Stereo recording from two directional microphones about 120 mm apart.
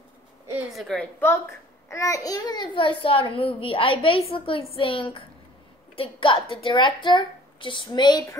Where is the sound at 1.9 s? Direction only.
25° left (ahead or behind).